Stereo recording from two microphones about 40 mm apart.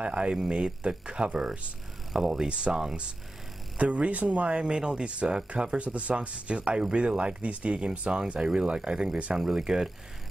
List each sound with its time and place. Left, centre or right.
0.0 s speech: right
2.1 s speech: centre
2.4 s speech: right
4.6 s speech: right
9.4 s speech: centre